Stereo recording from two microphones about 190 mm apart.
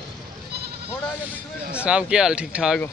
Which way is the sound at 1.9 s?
5° right (ahead or behind).